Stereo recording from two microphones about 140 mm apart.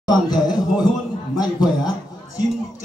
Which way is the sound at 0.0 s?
30° left (ahead or behind).